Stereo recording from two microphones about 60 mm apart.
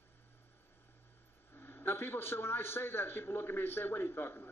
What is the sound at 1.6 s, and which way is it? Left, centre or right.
A man's voice, left.